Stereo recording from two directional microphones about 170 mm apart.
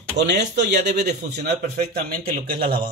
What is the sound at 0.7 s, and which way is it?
Speech, 80° right.